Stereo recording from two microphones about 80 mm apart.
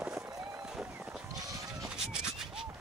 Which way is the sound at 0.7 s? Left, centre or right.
Centre.